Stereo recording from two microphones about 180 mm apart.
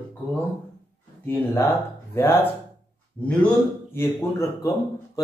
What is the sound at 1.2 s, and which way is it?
A man's voice, 10° left (ahead or behind).